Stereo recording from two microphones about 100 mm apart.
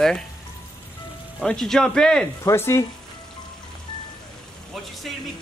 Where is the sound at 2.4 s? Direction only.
30° left (ahead or behind).